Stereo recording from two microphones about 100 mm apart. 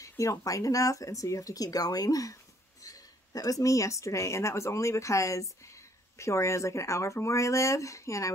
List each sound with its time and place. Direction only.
0.2 s speech: 30° left (ahead or behind)